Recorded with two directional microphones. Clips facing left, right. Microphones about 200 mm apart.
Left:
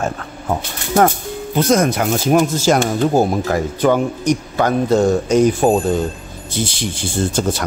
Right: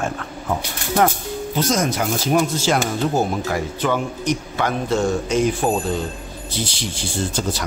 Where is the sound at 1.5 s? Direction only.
55° left (ahead or behind).